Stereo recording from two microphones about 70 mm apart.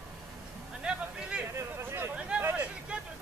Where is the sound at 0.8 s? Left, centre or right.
Centre.